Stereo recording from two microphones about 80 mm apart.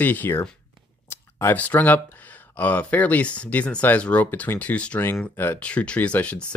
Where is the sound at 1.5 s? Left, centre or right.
Left.